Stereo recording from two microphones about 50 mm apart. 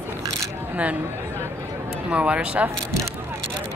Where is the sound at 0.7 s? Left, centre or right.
Right.